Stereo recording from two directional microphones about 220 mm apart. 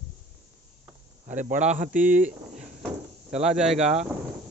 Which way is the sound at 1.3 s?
35° right (ahead or behind).